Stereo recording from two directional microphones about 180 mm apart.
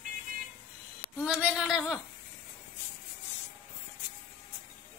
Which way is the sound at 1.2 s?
5° right (ahead or behind).